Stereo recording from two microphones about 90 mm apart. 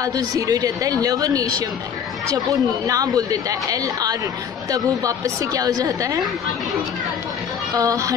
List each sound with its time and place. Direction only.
0.0 s a woman's voice: 45° right (ahead or behind)
7.7 s a woman's voice: 40° right (ahead or behind)